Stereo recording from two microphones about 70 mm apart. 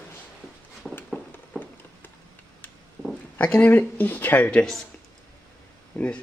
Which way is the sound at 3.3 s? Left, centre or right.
Centre.